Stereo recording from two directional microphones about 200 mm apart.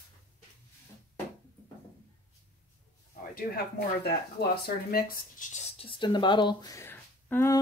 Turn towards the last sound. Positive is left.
turn(degrees=10)  # may be behind; listen again after turning